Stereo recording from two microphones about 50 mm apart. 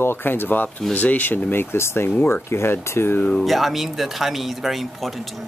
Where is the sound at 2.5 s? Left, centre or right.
Left.